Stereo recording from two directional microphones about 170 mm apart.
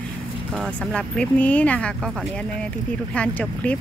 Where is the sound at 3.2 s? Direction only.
10° left (ahead or behind).